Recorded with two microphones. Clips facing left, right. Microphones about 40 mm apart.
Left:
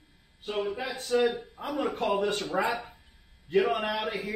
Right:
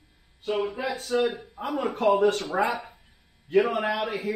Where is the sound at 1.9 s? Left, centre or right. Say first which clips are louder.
Right 9 dB; centre.